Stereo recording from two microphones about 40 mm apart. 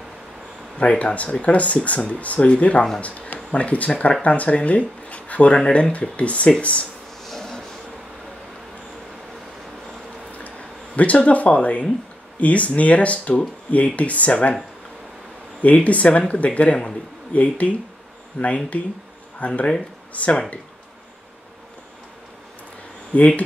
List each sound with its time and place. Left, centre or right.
0.7 s speech: left
7.2 s a sound: centre
11.0 s speech: left
15.6 s speech: left
23.1 s speech: left